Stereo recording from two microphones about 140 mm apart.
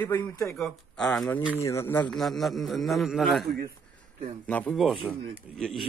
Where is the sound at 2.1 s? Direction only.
Centre (ahead or behind).